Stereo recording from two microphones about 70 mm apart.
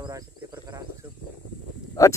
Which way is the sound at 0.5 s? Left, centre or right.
Right.